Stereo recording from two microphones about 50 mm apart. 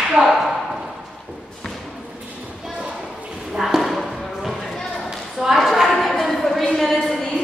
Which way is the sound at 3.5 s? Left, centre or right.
Centre.